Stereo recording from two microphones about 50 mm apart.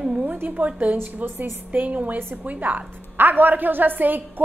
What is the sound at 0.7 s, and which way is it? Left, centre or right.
A woman's voice, right.